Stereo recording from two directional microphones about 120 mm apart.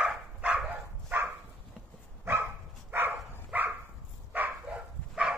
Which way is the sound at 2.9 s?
20° right (ahead or behind).